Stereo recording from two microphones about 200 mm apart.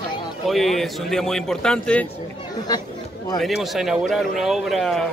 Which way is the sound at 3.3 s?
Centre (ahead or behind).